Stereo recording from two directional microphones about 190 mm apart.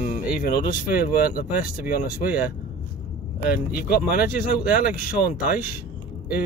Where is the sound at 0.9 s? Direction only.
10° right (ahead or behind).